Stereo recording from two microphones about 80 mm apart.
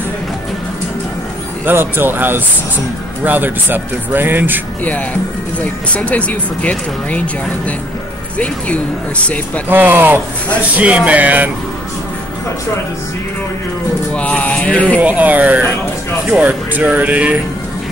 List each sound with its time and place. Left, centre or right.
1.7 s speech: right
4.8 s speech: centre
9.7 s speech: right
14.1 s speech: centre
15.0 s speech: centre